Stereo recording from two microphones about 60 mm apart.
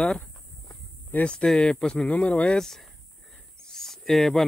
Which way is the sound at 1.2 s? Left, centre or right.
Centre.